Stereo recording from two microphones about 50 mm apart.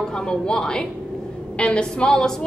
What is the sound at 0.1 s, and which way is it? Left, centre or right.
A woman's voice, centre.